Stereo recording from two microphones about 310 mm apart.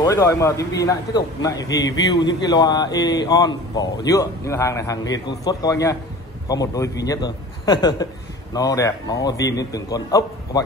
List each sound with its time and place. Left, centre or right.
0.0 s a man's voice: centre